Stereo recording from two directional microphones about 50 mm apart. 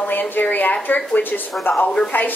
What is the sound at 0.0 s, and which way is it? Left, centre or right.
A woman's voice, left.